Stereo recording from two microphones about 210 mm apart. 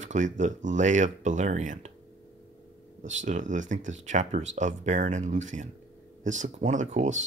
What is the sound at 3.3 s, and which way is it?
Speech, 35° right (ahead or behind).